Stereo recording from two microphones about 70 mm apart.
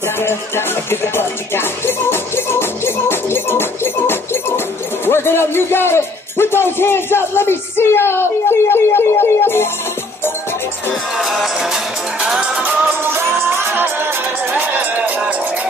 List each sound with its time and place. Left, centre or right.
0.2 s music: left
5.0 s a man's voice: left
11.1 s music: centre
12.2 s music: centre
13.7 s music: right